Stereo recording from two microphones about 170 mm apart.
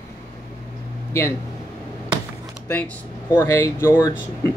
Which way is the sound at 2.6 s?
10° left (ahead or behind).